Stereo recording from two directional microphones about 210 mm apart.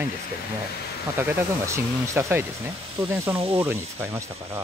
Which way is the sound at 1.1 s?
10° right (ahead or behind).